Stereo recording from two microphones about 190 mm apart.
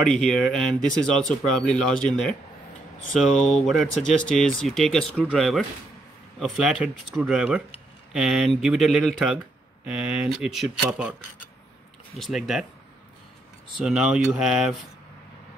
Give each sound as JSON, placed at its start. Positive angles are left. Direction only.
{"t": 0.0, "sound": "speech", "side_deg": 5}
{"t": 12.2, "sound": "speech", "side_deg": 0}
{"t": 13.7, "sound": "speech", "side_deg": -5}